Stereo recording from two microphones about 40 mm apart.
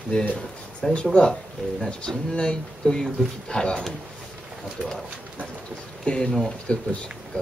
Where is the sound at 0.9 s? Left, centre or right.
Left.